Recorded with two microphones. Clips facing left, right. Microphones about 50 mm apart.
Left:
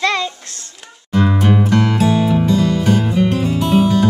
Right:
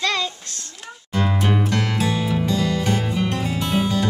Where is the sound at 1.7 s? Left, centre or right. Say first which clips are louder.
Left 7 dB; centre.